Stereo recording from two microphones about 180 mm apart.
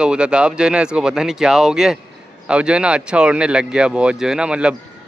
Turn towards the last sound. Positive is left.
turn(degrees=-5)  # may be behind; listen again after turning